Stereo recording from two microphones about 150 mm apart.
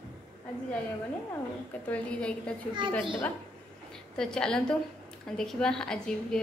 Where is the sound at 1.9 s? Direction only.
10° left (ahead or behind).